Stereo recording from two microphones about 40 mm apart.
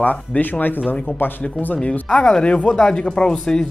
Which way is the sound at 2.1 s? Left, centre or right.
Left.